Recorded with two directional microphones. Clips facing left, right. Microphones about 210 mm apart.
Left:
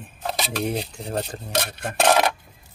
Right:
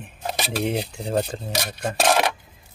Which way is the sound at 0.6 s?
25° right (ahead or behind).